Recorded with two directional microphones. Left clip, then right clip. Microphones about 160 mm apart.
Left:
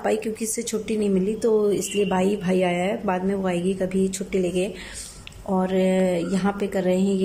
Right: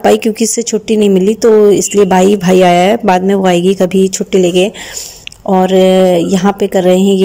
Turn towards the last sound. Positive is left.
turn(degrees=-50)  # may be behind; listen again after turning